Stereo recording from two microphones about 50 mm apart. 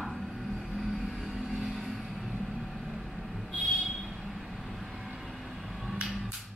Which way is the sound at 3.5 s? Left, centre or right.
Left.